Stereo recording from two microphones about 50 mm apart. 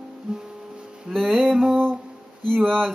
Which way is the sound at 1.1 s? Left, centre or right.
Centre.